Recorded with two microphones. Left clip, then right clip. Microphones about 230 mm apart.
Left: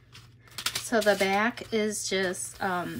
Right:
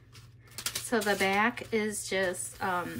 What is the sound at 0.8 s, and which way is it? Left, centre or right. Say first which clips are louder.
Speech: left 4 dB; centre.